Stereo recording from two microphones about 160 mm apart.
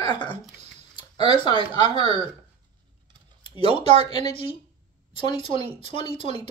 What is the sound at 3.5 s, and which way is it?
Speech, 30° left (ahead or behind).